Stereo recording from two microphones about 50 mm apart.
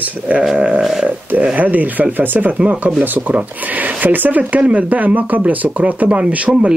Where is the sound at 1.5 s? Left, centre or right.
Right.